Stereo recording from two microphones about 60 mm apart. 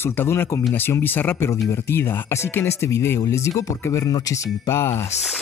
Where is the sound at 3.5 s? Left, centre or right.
Left.